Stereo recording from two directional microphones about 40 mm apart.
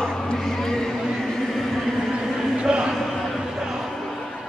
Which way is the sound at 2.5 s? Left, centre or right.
Centre.